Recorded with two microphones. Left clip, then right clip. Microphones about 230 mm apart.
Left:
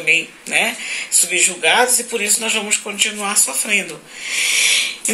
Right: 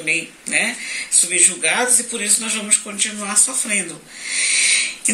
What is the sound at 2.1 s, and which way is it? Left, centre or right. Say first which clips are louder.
Speech: left 4 dB; centre.